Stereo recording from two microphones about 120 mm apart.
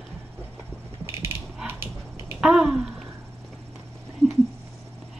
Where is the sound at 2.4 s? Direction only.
5° right (ahead or behind).